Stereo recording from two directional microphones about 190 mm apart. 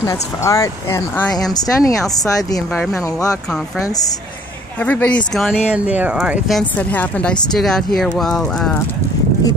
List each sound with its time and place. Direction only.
0.0 s speech: 15° left (ahead or behind)
2.7 s speech: 5° left (ahead or behind)
4.8 s speech: 5° left (ahead or behind)
6.6 s speech: 10° left (ahead or behind)